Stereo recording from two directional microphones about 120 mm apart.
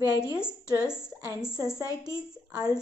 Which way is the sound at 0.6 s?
35° right (ahead or behind).